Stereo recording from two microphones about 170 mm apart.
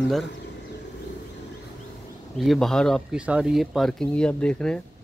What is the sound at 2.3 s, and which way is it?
Speech, centre (ahead or behind).